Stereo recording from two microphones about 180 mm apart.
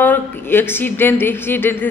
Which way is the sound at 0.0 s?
10° left (ahead or behind).